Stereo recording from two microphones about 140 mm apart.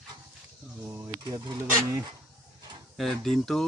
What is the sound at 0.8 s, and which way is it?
Speech, 20° right (ahead or behind).